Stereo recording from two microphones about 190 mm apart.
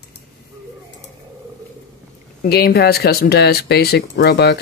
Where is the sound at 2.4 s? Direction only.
55° left (ahead or behind).